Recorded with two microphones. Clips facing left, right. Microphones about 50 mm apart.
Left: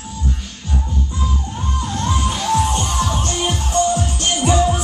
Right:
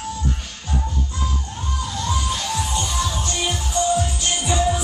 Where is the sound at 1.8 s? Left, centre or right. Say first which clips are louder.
Left 3 dB; left.